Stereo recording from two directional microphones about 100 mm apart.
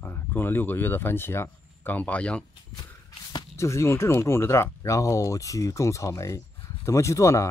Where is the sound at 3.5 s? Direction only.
30° left (ahead or behind).